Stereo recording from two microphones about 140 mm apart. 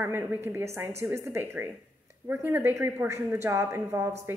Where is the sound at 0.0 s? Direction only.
15° right (ahead or behind).